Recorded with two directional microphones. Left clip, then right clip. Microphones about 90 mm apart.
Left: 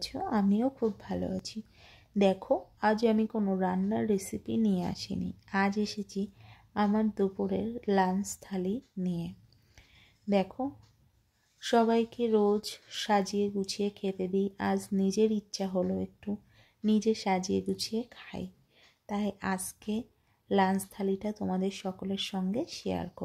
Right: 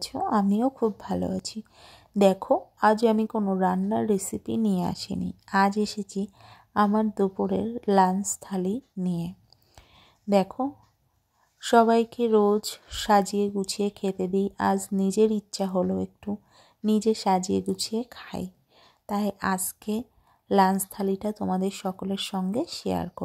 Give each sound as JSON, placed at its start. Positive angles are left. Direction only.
{"t": 0.3, "sound": "speech", "side_deg": -35}
{"t": 3.3, "sound": "a woman's voice", "side_deg": -25}
{"t": 3.6, "sound": "speech", "side_deg": -35}
{"t": 6.9, "sound": "speech", "side_deg": -35}
{"t": 9.8, "sound": "a sound", "side_deg": -45}
{"t": 11.6, "sound": "speech", "side_deg": -40}